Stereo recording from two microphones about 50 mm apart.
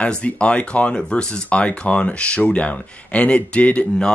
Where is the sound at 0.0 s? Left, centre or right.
Left.